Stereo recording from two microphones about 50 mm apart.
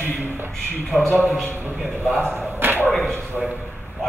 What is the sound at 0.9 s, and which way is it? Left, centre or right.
Speech, centre.